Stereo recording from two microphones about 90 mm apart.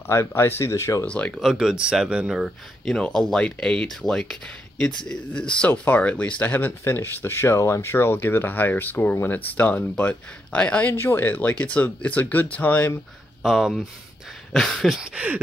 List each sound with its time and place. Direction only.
0.0 s speech: 30° left (ahead or behind)
1.0 s speech: 15° left (ahead or behind)
1.3 s speech: 5° right (ahead or behind)
2.9 s speech: 10° left (ahead or behind)
10.9 s speech: 25° left (ahead or behind)
13.4 s speech: centre (ahead or behind)
15.0 s a sound: 15° right (ahead or behind)